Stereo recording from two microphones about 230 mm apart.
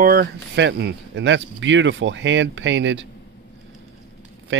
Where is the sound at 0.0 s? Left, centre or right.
Right.